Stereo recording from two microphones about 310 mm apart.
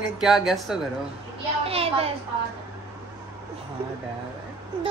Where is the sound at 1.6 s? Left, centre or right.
Centre.